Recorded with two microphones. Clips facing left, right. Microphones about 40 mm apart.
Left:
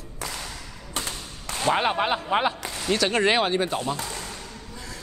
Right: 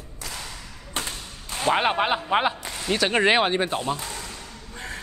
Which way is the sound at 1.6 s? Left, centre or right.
Centre.